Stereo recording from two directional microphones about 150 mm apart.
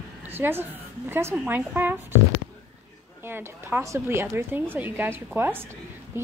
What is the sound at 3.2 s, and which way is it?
A woman's voice, 15° right (ahead or behind).